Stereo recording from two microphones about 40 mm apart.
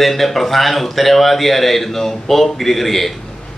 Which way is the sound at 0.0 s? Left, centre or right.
Centre.